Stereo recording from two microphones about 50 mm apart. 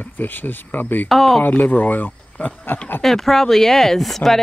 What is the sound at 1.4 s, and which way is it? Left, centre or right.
Speech, left.